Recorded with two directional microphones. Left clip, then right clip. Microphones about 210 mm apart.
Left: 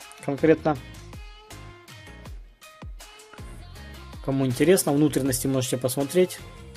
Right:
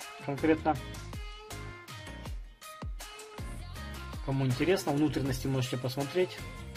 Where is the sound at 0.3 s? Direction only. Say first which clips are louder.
Left 7 dB; 35° left (ahead or behind).